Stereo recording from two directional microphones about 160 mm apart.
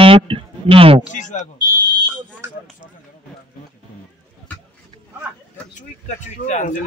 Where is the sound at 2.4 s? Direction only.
15° right (ahead or behind).